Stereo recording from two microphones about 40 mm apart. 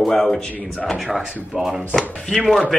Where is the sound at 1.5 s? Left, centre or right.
Centre.